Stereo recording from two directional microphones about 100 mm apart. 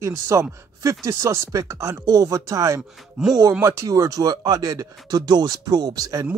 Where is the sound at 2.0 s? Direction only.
40° right (ahead or behind).